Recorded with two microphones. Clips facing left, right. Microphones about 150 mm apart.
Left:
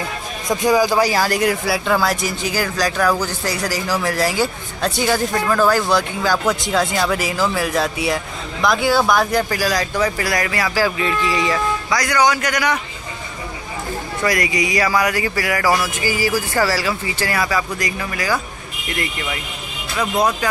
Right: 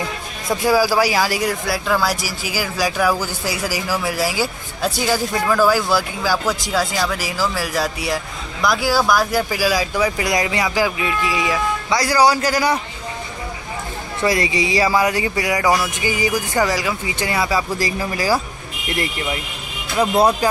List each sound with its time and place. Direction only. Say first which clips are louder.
0.5 s speech: left 1 dB; 5° right (ahead or behind)
11.9 s a man's voice: right 2 dB; 30° right (ahead or behind)
14.2 s speech: right 1 dB; 25° right (ahead or behind)
20.0 s a man's voice: right 3 dB; 30° right (ahead or behind)